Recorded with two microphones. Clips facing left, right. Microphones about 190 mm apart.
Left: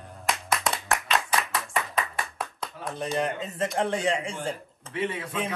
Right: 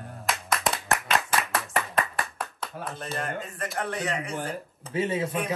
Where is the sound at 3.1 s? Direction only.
15° left (ahead or behind).